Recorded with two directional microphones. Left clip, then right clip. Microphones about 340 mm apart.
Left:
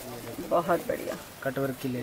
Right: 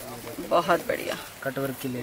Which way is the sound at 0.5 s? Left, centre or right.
Centre.